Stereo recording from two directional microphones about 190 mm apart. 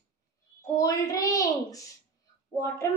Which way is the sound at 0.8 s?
15° left (ahead or behind).